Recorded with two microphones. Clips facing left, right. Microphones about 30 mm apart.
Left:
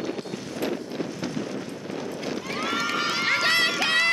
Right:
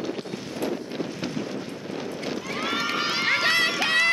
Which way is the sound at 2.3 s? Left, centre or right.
Centre.